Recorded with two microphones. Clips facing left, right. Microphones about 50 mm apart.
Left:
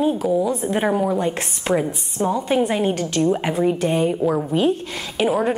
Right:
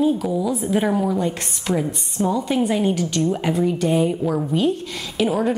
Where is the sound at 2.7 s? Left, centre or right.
Centre.